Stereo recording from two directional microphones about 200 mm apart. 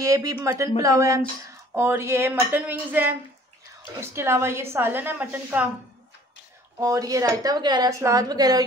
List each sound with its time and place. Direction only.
0.0 s speech: 15° right (ahead or behind)
6.8 s speech: 15° right (ahead or behind)